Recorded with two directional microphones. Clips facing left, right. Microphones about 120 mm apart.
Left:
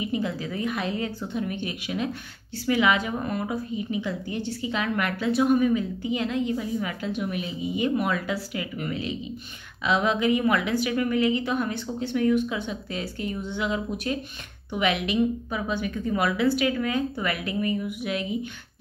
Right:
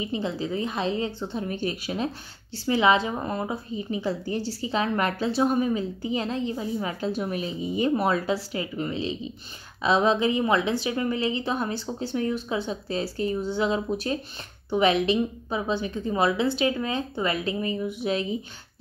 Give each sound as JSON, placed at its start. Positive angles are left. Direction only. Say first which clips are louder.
{"t": 0.0, "sound": "a woman's voice", "louder": "even", "side_deg": -30}